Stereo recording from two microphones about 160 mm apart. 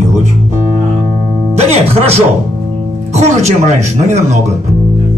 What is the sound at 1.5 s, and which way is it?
Music, 40° right (ahead or behind).